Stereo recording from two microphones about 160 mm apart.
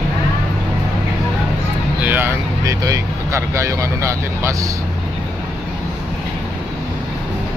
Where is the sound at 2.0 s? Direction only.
15° right (ahead or behind).